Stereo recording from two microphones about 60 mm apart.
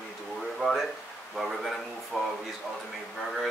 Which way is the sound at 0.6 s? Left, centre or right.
Centre.